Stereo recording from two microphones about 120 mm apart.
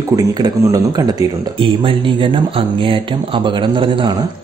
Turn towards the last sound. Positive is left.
turn(degrees=-45)  # may be behind; listen again after turning